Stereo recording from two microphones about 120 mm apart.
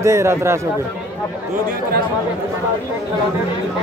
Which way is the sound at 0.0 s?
25° right (ahead or behind).